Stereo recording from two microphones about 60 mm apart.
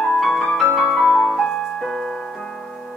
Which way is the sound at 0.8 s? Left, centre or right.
Centre.